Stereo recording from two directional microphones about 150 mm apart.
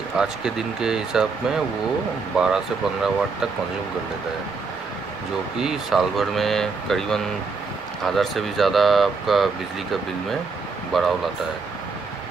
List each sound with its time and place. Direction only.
0.2 s speech: 5° right (ahead or behind)
5.6 s speech: centre (ahead or behind)
10.9 s speech: centre (ahead or behind)